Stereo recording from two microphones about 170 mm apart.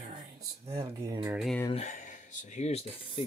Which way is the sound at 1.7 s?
45° left (ahead or behind).